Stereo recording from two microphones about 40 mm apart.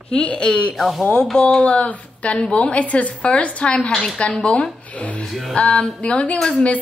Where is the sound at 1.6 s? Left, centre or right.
Left.